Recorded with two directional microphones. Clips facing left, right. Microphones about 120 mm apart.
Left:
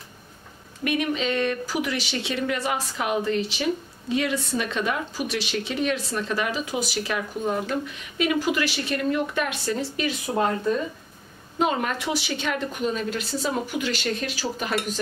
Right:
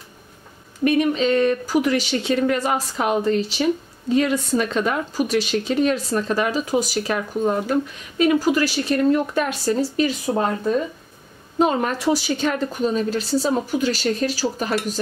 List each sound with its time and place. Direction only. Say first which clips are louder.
0.8 s a woman's voice: right 7 dB; 35° right (ahead or behind)
11.5 s a woman's voice: right 5 dB; 35° right (ahead or behind)